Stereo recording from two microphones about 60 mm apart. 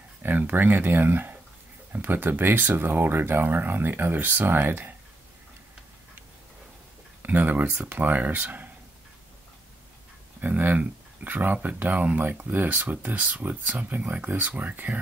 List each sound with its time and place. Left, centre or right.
0.2 s speech: right
7.2 s speech: right
10.4 s speech: right